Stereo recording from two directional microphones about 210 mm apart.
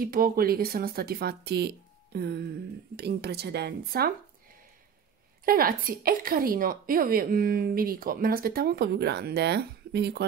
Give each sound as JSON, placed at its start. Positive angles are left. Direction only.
{"t": 0.0, "sound": "a woman's voice", "side_deg": -45}
{"t": 5.4, "sound": "a woman's voice", "side_deg": -45}